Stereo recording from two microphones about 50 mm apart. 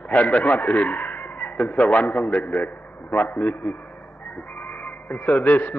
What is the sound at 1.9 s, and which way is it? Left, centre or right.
Speech, left.